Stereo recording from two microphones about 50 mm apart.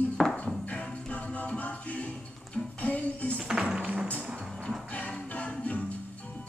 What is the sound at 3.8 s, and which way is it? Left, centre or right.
Music, right.